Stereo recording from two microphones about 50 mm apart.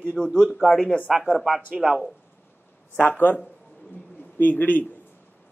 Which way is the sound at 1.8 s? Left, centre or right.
Centre.